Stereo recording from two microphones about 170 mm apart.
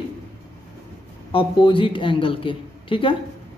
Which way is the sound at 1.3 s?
30° left (ahead or behind).